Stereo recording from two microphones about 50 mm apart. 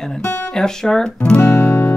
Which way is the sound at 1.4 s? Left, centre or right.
Left.